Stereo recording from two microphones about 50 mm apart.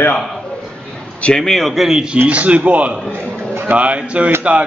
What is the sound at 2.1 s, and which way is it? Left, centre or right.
A man's voice, right.